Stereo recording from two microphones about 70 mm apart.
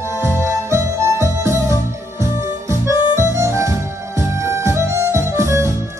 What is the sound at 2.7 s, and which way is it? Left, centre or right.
Music, right.